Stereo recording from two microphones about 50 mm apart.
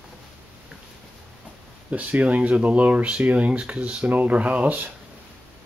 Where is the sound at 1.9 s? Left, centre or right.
Right.